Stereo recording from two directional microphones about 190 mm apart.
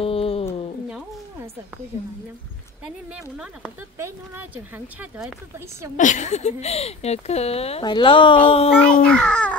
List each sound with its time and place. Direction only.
0.0 s a sound: 30° left (ahead or behind)
4.0 s speech: 15° right (ahead or behind)
5.9 s speech: 40° left (ahead or behind); by 8.4 s 25° left (ahead or behind)
8.6 s a child's voice: 5° left (ahead or behind)